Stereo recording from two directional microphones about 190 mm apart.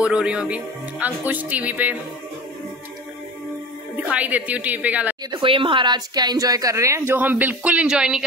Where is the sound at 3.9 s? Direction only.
5° right (ahead or behind).